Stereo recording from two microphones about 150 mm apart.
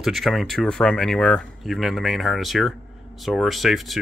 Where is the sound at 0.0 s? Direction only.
Centre (ahead or behind).